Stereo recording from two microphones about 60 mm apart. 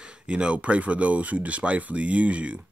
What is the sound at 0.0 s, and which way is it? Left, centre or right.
Speech, centre.